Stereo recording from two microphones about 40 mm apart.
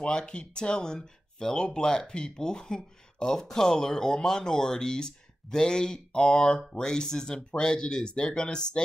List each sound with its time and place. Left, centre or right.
0.0 s speech: left